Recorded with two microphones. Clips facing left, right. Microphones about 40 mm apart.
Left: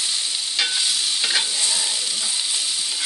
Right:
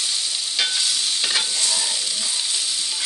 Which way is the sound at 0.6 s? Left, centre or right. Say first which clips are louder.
Even; centre.